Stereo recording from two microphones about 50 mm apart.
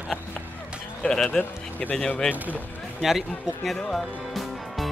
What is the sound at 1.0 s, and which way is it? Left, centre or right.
Music, centre.